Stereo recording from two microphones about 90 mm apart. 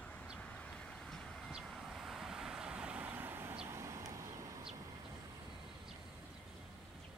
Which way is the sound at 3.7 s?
35° right (ahead or behind).